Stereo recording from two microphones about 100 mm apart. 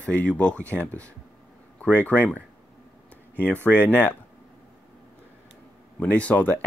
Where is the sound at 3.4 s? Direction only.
15° left (ahead or behind).